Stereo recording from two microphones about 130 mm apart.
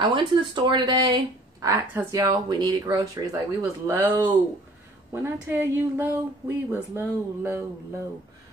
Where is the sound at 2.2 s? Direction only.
35° right (ahead or behind); by 4.3 s 15° right (ahead or behind).